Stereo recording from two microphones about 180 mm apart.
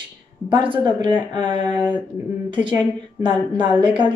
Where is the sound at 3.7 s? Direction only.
25° right (ahead or behind).